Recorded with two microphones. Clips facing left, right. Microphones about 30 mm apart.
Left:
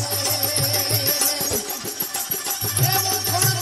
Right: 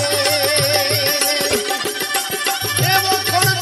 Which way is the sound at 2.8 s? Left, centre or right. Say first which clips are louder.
Right 7 dB; right.